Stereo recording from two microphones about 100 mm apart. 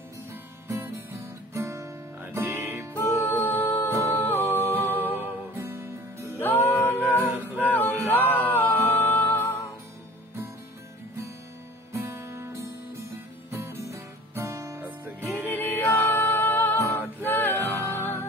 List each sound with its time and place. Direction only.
0.7 s guitar: 25° right (ahead or behind)
2.9 s music: 20° left (ahead or behind)
5.1 s music: 20° right (ahead or behind)
6.4 s music: 20° left (ahead or behind)
11.9 s music: 25° right (ahead or behind)
12.6 s guitar: 30° right (ahead or behind)
14.8 s music: 15° right (ahead or behind)
15.2 s music: 15° left (ahead or behind)